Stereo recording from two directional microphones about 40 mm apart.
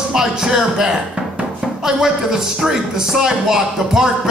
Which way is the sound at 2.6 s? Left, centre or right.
Centre.